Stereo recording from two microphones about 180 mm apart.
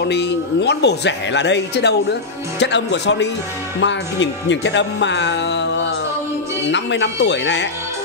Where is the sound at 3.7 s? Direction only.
90° left.